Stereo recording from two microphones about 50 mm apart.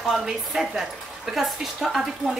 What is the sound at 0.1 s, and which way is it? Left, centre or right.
A woman's voice, centre.